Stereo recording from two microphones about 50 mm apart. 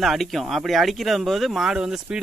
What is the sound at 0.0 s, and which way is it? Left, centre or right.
Speech, centre.